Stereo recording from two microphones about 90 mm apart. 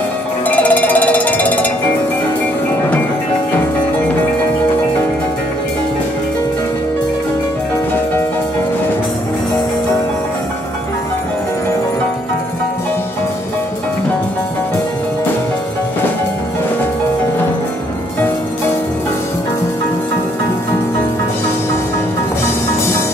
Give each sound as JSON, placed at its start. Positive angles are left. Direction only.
{"t": 0.5, "sound": "frog", "side_deg": 15}